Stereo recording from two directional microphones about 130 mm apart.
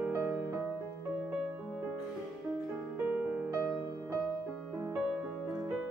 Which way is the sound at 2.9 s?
10° right (ahead or behind).